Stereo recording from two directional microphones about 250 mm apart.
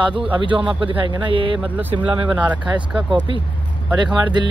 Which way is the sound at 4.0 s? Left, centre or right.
Centre.